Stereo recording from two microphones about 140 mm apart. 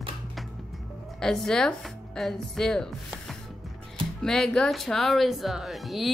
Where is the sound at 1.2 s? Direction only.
5° left (ahead or behind).